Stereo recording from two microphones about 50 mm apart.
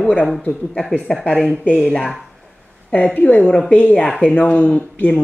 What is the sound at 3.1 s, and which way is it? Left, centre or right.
Speech, left.